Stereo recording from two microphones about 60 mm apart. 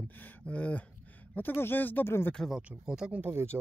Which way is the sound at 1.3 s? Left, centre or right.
Left.